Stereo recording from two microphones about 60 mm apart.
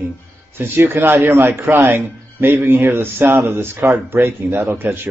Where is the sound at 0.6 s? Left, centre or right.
Right.